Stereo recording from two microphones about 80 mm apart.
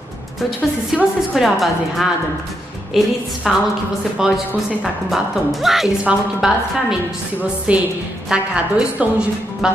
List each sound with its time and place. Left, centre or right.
0.9 s a woman's voice: centre